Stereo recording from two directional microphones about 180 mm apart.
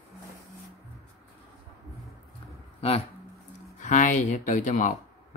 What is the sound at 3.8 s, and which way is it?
Speech, 45° left (ahead or behind).